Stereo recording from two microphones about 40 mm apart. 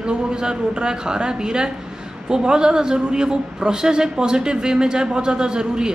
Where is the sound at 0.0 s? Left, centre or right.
Right.